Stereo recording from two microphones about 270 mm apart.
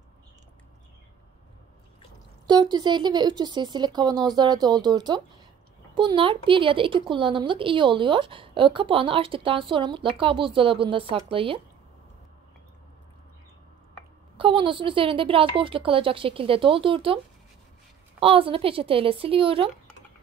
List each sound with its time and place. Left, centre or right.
2.4 s speech: centre
14.3 s speech: centre
18.2 s speech: centre